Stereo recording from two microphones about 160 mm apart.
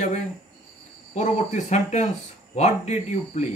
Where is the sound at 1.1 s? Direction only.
45° left (ahead or behind).